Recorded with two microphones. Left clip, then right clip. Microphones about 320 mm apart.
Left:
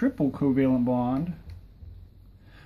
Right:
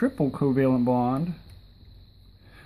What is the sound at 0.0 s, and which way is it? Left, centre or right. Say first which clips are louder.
Speech: right 1 dB; centre.